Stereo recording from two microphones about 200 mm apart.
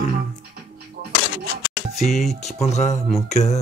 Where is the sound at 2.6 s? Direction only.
35° left (ahead or behind).